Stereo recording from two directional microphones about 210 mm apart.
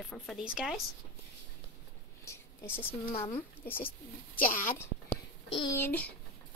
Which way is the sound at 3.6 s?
10° left (ahead or behind).